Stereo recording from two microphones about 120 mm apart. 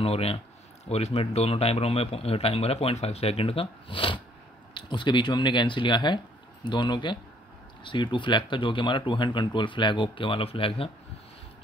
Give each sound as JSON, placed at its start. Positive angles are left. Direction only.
{"t": 0.0, "sound": "a man's voice", "side_deg": 55}